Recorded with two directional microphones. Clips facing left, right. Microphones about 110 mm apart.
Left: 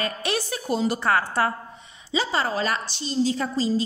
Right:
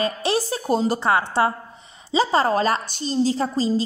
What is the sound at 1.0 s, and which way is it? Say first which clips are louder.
Speech: right 3 dB; 20° right (ahead or behind).